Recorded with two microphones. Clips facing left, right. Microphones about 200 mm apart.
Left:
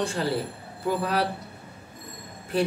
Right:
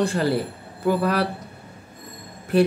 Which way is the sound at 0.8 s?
65° right (ahead or behind).